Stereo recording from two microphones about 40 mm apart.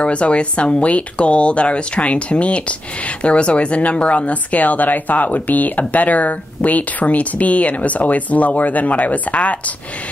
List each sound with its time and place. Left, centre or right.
0.0 s speech: left